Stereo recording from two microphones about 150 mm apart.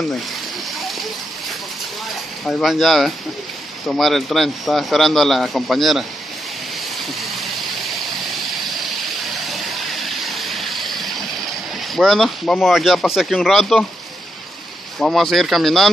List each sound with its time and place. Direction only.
2.4 s speech: centre (ahead or behind)
9.5 s vehicle: centre (ahead or behind)
11.9 s speech: centre (ahead or behind)
15.0 s speech: centre (ahead or behind)